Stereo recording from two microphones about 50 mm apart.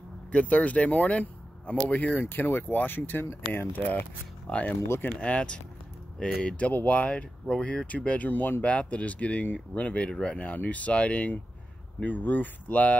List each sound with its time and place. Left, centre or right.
0.3 s speech: left
4.5 s speech: left
6.7 s speech: left
7.0 s speech: left
8.3 s speech: left